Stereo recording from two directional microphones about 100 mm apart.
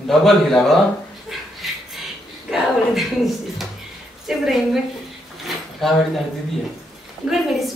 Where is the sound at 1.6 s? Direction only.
Centre (ahead or behind).